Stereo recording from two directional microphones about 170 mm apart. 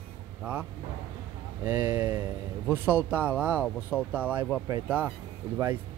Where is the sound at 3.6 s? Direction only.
5° left (ahead or behind).